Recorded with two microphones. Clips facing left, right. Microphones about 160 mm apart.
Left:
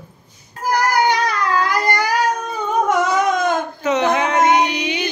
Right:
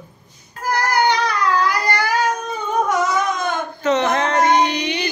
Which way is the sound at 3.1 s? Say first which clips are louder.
Left 4 dB; 90° left.